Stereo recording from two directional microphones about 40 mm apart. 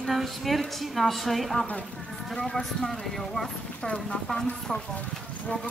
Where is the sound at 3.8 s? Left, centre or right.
Left.